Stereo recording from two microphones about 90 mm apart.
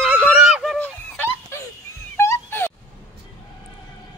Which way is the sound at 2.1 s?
30° left (ahead or behind).